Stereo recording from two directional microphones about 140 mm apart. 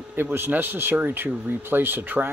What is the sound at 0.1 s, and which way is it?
Speech, 15° right (ahead or behind).